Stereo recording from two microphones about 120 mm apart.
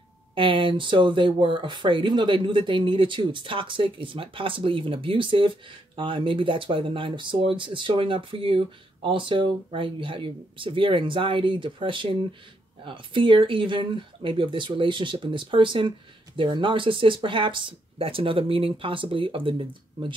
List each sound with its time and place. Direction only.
0.3 s speech: 45° right (ahead or behind)